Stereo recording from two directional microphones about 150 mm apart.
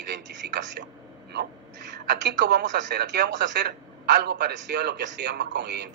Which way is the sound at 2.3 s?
90° right.